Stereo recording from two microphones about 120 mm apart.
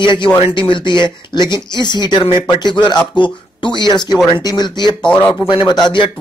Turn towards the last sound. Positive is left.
turn(degrees=40)  # may be behind; listen again after turning